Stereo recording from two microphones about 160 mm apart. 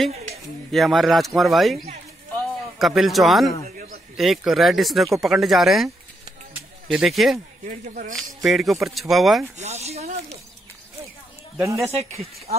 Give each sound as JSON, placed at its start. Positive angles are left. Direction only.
{"t": 0.7, "sound": "speech", "side_deg": 0}
{"t": 2.8, "sound": "speech", "side_deg": 0}
{"t": 3.6, "sound": "a sound", "side_deg": -60}
{"t": 4.2, "sound": "speech", "side_deg": 0}
{"t": 6.9, "sound": "speech", "side_deg": 0}
{"t": 7.6, "sound": "speech", "side_deg": -55}
{"t": 8.4, "sound": "speech", "side_deg": 0}
{"t": 9.6, "sound": "speech", "side_deg": -45}
{"t": 11.5, "sound": "speech", "side_deg": -15}